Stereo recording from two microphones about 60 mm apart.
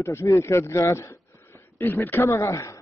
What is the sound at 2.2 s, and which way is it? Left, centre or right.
Speech, left.